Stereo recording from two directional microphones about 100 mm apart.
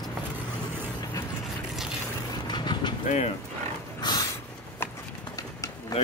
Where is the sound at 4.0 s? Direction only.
45° left (ahead or behind).